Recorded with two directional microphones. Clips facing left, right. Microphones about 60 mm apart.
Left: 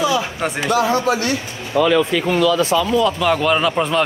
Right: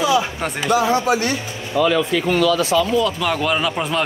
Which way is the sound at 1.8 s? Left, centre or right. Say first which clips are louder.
Left 2 dB; left.